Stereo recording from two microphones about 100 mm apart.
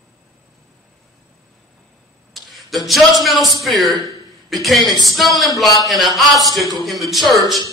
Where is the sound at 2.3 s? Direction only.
Centre (ahead or behind).